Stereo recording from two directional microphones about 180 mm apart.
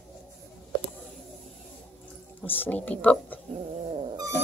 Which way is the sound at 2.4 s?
10° left (ahead or behind).